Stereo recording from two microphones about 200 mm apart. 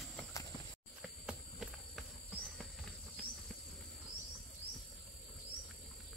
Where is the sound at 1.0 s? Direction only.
5° right (ahead or behind).